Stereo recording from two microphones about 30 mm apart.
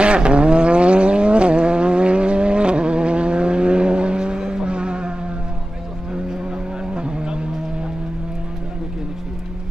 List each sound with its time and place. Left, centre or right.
0.0 s vehicle: right
6.9 s vehicle: right